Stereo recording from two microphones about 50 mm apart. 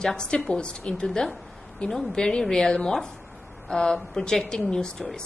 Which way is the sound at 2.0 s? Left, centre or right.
Centre.